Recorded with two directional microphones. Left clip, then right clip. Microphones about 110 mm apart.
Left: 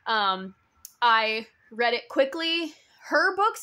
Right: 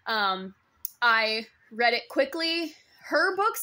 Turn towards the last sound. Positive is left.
turn(degrees=30)  # may be behind; listen again after turning